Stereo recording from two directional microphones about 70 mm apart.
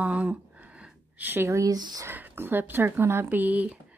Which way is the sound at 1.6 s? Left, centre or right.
Right.